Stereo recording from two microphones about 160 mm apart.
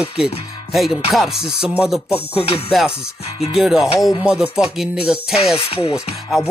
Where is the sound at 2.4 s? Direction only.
40° left (ahead or behind).